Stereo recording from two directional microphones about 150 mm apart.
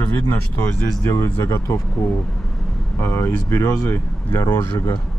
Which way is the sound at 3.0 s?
20° left (ahead or behind).